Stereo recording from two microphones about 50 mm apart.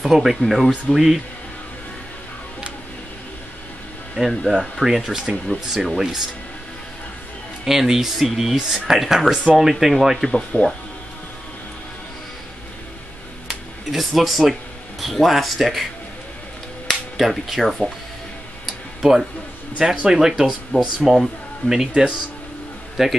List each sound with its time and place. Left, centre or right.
0.0 s speech: centre
4.5 s speech: centre
7.6 s speech: centre
10.5 s speech: left
13.5 s speech: centre
19.8 s speech: centre